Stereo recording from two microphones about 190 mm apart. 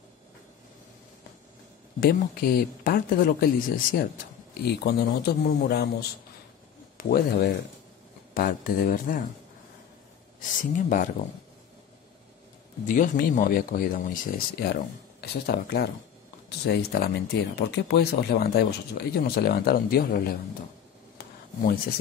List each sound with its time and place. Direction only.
2.0 s speech: 50° left (ahead or behind)
10.4 s speech: 45° left (ahead or behind)
12.8 s speech: 45° left (ahead or behind)